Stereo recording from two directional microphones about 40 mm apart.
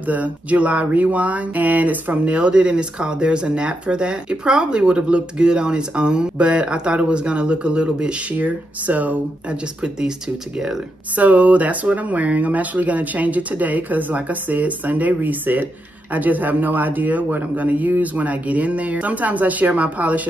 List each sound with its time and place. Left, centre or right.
0.0 s speech: right
2.2 s speech: right
8.4 s speech: right
9.5 s speech: right
11.1 s speech: right